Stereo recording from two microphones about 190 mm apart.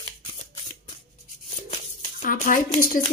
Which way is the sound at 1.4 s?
40° left (ahead or behind).